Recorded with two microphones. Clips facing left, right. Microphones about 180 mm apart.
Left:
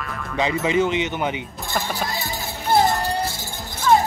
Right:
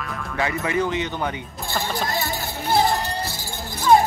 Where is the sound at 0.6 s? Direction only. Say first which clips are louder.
Left 4 dB; 20° left (ahead or behind).